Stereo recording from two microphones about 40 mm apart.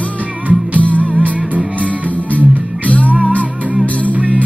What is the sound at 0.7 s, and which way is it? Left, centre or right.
Music, left.